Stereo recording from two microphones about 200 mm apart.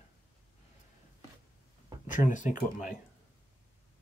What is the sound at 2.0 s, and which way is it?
Speech, 40° left (ahead or behind).